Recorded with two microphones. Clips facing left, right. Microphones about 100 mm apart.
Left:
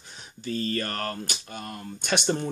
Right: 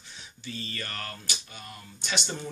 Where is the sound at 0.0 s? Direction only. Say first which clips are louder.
Left 6 dB; 45° left (ahead or behind).